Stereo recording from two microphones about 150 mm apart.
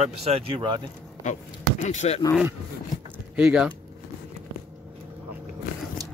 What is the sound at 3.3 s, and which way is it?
Speech, 5° right (ahead or behind).